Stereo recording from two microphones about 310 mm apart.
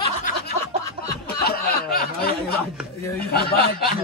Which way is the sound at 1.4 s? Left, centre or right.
Left.